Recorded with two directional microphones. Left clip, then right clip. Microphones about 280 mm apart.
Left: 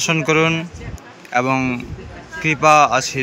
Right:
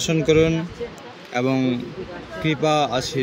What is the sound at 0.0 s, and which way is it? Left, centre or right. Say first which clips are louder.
Speech: left 2 dB; centre.